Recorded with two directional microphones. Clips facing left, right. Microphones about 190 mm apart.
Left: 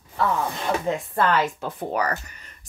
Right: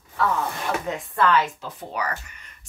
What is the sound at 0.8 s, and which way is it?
Speech, 45° left (ahead or behind).